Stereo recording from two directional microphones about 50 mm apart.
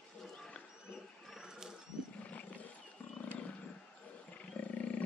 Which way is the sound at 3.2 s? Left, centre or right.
Left.